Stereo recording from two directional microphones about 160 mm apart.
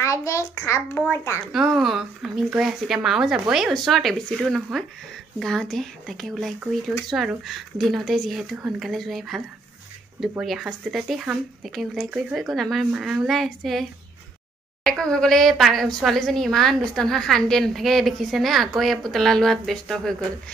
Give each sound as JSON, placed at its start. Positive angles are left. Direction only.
{"t": 0.0, "sound": "a child's voice", "side_deg": 20}
{"t": 1.5, "sound": "speech", "side_deg": 0}
{"t": 10.4, "sound": "speech", "side_deg": 0}